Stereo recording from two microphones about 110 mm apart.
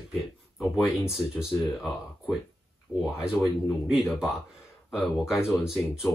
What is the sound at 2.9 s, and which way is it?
Speech, 20° left (ahead or behind).